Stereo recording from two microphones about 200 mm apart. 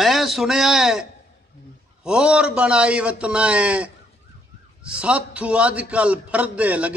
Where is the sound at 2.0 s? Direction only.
5° right (ahead or behind).